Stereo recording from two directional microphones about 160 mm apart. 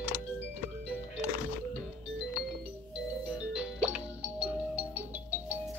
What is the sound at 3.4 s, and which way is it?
Music, 5° right (ahead or behind).